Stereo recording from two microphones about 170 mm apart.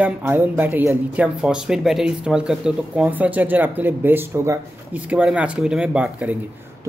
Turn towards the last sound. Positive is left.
turn(degrees=-10)  # may be behind; listen again after turning